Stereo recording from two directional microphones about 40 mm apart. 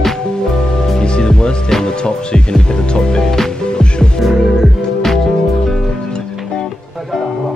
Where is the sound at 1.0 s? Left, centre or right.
Centre.